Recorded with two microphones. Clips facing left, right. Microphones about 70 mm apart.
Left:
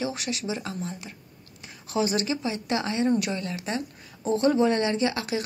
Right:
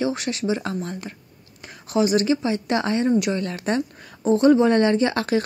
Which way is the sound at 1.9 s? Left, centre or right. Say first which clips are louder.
Right 7 dB; right.